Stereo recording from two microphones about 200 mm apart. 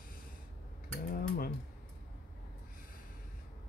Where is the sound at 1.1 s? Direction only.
45° left (ahead or behind).